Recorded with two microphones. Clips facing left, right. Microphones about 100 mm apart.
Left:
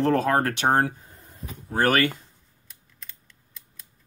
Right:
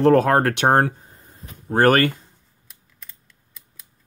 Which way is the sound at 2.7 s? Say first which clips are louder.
Even; 5° right (ahead or behind).